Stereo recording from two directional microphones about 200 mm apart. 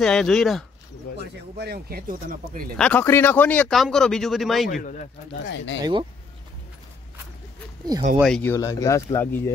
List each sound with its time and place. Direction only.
0.0 s speech: 5° left (ahead or behind)
1.1 s speech: 55° right (ahead or behind)
2.8 s a man's voice: 10° left (ahead or behind)
5.4 s speech: 60° left (ahead or behind)
5.8 s speech: 20° right (ahead or behind)
8.2 s speech: 5° left (ahead or behind)